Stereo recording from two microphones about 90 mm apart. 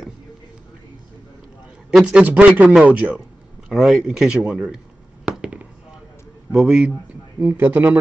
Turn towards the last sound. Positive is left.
turn(degrees=-20)  # may be behind; listen again after turning